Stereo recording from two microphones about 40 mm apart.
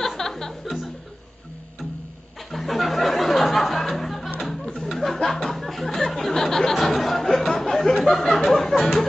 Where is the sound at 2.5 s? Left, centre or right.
Centre.